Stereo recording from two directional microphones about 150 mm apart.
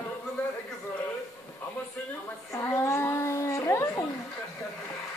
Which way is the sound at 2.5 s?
20° left (ahead or behind).